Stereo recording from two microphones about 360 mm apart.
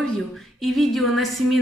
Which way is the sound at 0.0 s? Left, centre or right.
Centre.